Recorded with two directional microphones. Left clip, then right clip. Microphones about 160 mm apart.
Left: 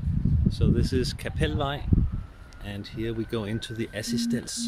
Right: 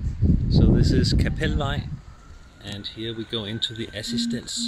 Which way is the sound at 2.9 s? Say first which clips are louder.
Left 1 dB; 15° left (ahead or behind).